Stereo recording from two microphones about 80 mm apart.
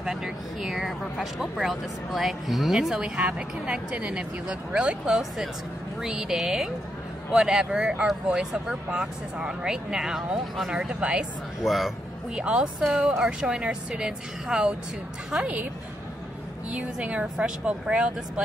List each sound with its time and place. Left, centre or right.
0.0 s speech: centre
11.6 s speech: centre
12.4 s speech: centre
16.7 s speech: centre